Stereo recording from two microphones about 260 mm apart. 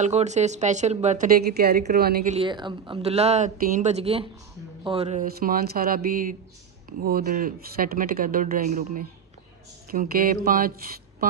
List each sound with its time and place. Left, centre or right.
0.0 s speech: right
2.3 s speech: centre; by 10.7 s right